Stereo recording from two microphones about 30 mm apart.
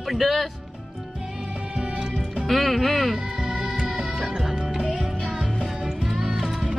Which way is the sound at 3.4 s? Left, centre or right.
Centre.